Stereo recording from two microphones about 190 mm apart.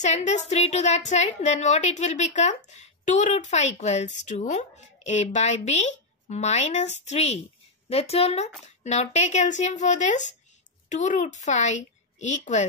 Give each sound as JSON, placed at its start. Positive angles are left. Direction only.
{"t": 0.0, "sound": "a woman's voice", "side_deg": 35}